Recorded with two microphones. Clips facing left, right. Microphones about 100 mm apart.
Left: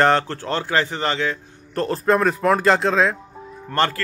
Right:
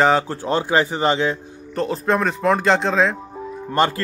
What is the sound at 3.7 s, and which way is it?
Speech, 15° right (ahead or behind).